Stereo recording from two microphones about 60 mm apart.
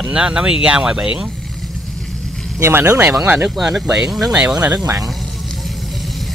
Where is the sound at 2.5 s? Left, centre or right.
Right.